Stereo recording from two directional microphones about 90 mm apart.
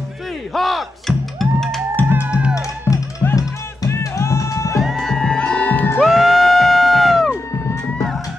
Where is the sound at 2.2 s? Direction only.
10° right (ahead or behind).